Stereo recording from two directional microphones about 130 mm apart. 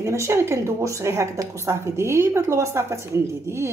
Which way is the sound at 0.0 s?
20° right (ahead or behind).